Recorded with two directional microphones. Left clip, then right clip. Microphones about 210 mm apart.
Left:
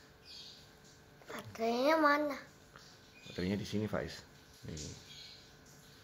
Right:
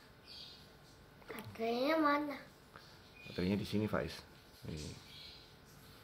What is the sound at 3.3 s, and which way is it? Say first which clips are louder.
Speech: even; 5° right (ahead or behind).